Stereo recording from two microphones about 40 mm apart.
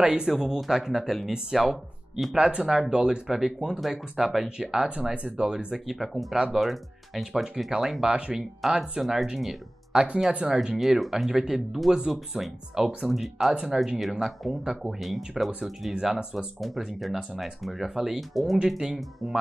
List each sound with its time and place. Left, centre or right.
0.0 s speech: right
0.6 s speech: centre
2.5 s speech: right
3.3 s speech: centre
4.6 s speech: centre
5.9 s speech: centre; by 10.8 s right
10.8 s speech: centre
18.7 s speech: centre